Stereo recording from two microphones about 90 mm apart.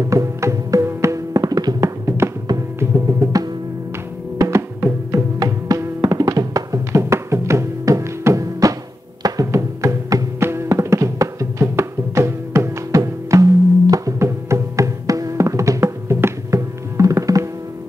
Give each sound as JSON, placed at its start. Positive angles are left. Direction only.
{"t": 0.0, "sound": "music", "side_deg": -35}
{"t": 1.8, "sound": "music", "side_deg": -30}
{"t": 4.4, "sound": "music", "side_deg": -35}